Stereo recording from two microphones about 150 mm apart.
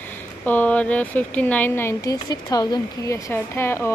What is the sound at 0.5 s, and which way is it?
Speech, 10° left (ahead or behind).